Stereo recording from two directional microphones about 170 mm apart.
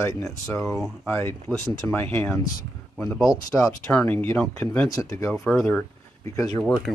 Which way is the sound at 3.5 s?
10° left (ahead or behind).